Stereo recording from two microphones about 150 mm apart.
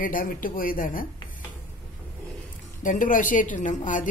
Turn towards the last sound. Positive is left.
turn(degrees=55)  # may be behind; listen again after turning